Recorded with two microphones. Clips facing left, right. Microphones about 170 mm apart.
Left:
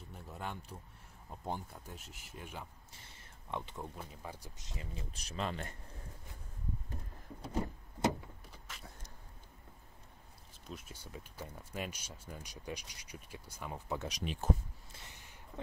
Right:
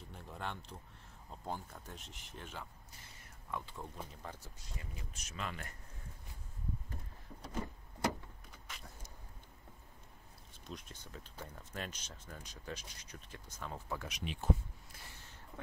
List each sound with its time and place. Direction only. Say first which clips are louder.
0.1 s speech: even; 5° left (ahead or behind)
1.9 s speech: left 1 dB; 5° left (ahead or behind)
3.4 s speech: left 2 dB; 20° left (ahead or behind)
4.1 s speech: left 2 dB; 10° left (ahead or behind); by 5.8 s 30° left (ahead or behind)
7.4 s vehicle: left 4 dB; 25° left (ahead or behind)
8.6 s a sound: even; centre (ahead or behind)
10.5 s speech: left 1 dB; 5° left (ahead or behind)
14.0 s speech: left 3 dB; 40° left (ahead or behind)
15.5 s a sound: left 5 dB; 20° left (ahead or behind)